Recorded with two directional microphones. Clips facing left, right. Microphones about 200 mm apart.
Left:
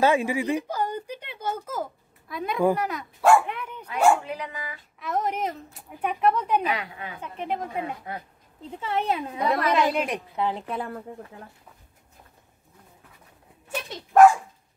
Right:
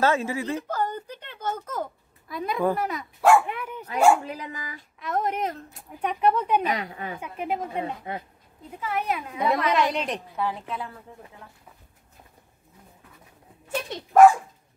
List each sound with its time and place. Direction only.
0.0 s a sound: 15° left (ahead or behind)
2.7 s speech: centre (ahead or behind)
3.9 s speech: 40° right (ahead or behind)
5.0 s speech: centre (ahead or behind)
6.6 s speech: 40° right (ahead or behind)
7.2 s speech: 10° right (ahead or behind)
7.8 s speech: 25° right (ahead or behind)
8.6 s speech: 25° left (ahead or behind)
9.4 s speech: centre (ahead or behind)
10.3 s speech: 20° left (ahead or behind)
10.7 s speech: 50° left (ahead or behind)